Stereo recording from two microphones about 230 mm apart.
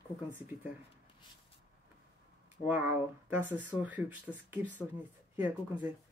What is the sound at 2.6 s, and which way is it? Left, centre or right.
Speech, centre.